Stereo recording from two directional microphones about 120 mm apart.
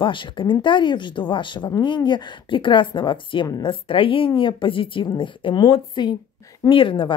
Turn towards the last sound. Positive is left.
turn(degrees=45)  # may be behind; listen again after turning